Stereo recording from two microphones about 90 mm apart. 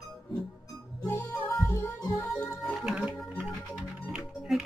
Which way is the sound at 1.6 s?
30° left (ahead or behind).